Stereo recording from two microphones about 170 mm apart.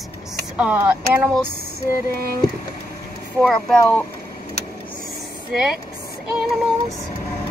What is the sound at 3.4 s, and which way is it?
Speech, 5° left (ahead or behind).